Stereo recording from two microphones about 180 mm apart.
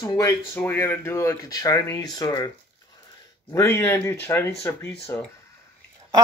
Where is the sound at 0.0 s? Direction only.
20° left (ahead or behind).